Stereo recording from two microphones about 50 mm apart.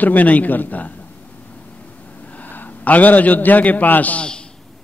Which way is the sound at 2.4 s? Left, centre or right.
Left.